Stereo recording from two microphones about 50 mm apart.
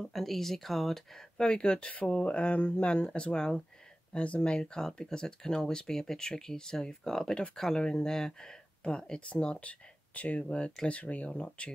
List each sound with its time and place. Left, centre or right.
0.0 s speech: centre
1.5 s speech: centre
4.1 s speech: left